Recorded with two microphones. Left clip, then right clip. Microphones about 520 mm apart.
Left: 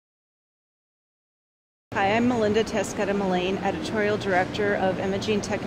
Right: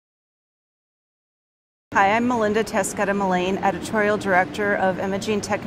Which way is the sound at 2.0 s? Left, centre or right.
Right.